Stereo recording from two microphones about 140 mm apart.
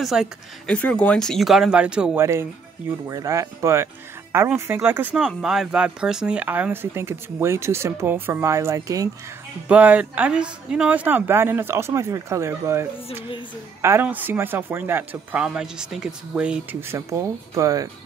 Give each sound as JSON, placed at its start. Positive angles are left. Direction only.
{"t": 0.0, "sound": "speech", "side_deg": 0}
{"t": 0.7, "sound": "speech", "side_deg": 10}
{"t": 2.1, "sound": "speech", "side_deg": -20}
{"t": 9.7, "sound": "speech", "side_deg": -10}
{"t": 16.8, "sound": "speech", "side_deg": -20}